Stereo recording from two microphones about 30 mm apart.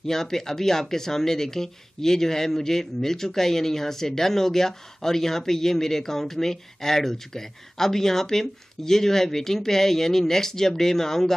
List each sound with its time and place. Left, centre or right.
0.0 s speech: centre